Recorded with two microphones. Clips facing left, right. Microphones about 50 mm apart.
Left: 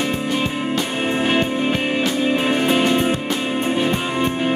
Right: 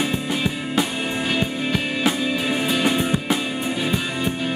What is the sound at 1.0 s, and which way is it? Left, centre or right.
Music, left.